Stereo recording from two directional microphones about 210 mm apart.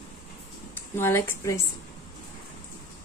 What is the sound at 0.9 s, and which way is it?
Speech, 10° left (ahead or behind).